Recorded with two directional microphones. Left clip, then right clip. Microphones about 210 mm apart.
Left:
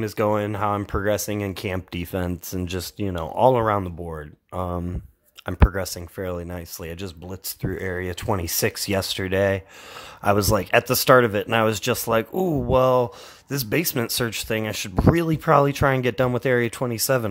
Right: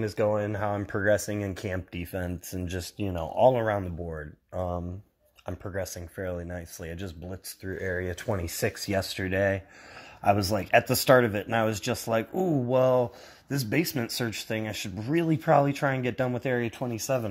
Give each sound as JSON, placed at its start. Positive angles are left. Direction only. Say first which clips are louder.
{"t": 0.0, "sound": "speech", "louder": "left 4 dB", "side_deg": 20}